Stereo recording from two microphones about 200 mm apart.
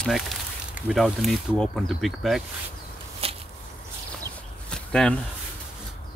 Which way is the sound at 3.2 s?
30° right (ahead or behind).